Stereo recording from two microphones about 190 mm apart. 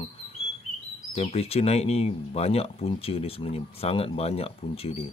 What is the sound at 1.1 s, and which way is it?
Speech, 30° left (ahead or behind).